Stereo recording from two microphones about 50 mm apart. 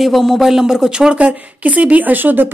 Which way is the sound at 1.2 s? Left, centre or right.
Right.